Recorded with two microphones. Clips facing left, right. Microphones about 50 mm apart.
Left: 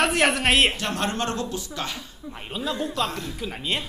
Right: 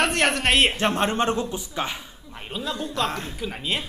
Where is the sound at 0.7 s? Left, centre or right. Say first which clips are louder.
Right 4 dB; right.